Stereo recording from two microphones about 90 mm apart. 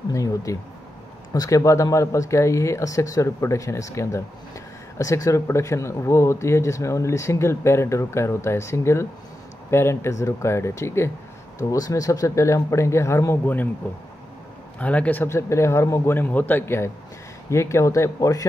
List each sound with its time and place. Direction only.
0.1 s speech: 40° left (ahead or behind)
14.8 s speech: 15° left (ahead or behind); by 16.2 s 30° left (ahead or behind)
16.2 s speech: 20° left (ahead or behind); by 18.5 s 40° left (ahead or behind)